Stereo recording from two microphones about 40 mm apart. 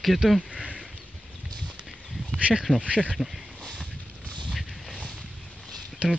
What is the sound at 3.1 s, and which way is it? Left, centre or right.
Speech, centre.